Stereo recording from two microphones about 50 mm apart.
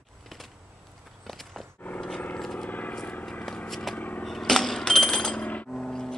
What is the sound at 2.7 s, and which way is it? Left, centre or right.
Vehicle, left.